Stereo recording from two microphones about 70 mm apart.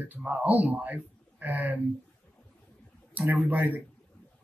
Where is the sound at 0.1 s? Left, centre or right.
Right.